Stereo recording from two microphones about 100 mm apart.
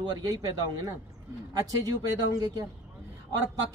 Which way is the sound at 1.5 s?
40° right (ahead or behind).